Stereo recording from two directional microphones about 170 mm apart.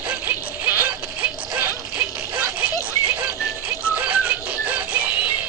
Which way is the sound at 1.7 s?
20° left (ahead or behind).